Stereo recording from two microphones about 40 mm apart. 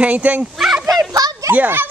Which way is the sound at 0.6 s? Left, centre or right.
Centre.